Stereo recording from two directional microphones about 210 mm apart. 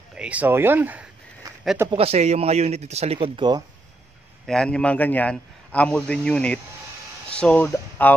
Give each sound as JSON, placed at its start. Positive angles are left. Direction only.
{"t": 0.1, "sound": "a sound", "side_deg": -5}
{"t": 1.9, "sound": "speech", "side_deg": -25}
{"t": 4.5, "sound": "a man's voice", "side_deg": 5}